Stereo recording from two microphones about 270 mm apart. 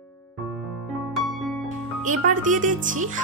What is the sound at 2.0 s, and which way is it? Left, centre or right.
Speech, right.